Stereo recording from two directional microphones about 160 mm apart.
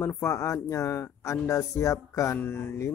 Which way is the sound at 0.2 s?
15° left (ahead or behind).